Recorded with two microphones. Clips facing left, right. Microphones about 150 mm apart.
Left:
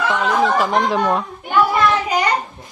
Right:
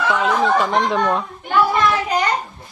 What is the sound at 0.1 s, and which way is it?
A woman's voice, centre (ahead or behind).